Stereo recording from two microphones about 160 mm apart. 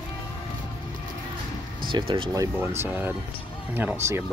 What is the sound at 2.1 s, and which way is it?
Speech, 25° right (ahead or behind).